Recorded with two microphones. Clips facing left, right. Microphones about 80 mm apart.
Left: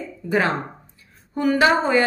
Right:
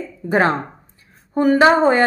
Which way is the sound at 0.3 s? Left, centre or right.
Right.